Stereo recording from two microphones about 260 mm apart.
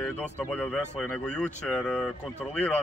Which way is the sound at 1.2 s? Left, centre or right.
Centre.